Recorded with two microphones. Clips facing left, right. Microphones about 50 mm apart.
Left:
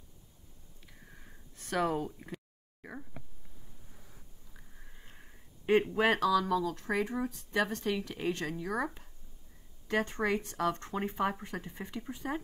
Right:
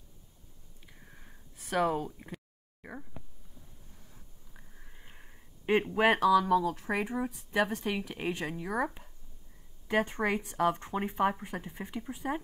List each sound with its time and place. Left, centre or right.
1.1 s a sound: centre
4.6 s sniff: centre
5.7 s speech: centre